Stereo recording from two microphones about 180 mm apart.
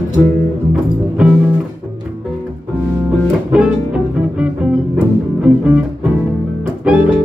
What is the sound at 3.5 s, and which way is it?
Music, 5° right (ahead or behind).